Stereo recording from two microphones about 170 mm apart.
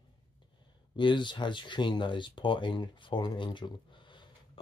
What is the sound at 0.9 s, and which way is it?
Speech, 30° left (ahead or behind).